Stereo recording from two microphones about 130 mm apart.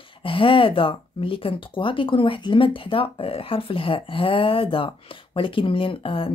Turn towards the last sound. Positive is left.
turn(degrees=45)  # may be behind; listen again after turning